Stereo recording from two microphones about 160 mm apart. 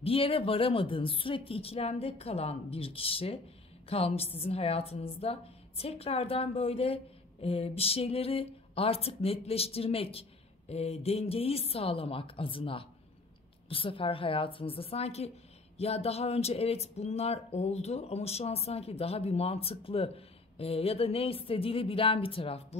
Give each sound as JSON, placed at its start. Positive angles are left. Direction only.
{"t": 0.0, "sound": "speech", "side_deg": 35}